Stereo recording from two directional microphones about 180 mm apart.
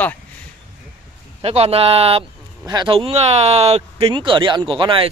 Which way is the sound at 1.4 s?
35° right (ahead or behind).